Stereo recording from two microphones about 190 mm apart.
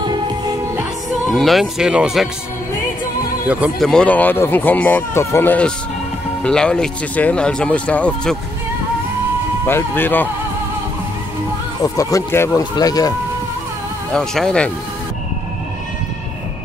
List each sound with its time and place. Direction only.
1.3 s speech: centre (ahead or behind)
3.4 s speech: 5° right (ahead or behind)
3.9 s speech: 5° left (ahead or behind)
9.7 s speech: 10° left (ahead or behind)
11.8 s speech: 15° left (ahead or behind)
14.1 s speech: 5° left (ahead or behind)